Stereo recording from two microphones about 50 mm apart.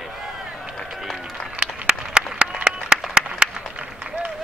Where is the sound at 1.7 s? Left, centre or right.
Centre.